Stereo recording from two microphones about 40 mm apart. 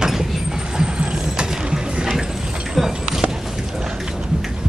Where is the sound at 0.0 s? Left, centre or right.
Centre.